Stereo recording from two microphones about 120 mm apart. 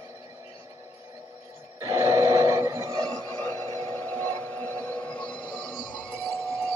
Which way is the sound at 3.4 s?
30° left (ahead or behind).